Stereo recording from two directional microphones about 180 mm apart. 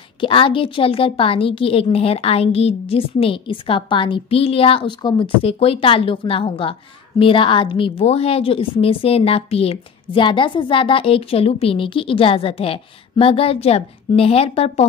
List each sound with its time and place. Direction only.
0.2 s a woman's voice: 30° left (ahead or behind)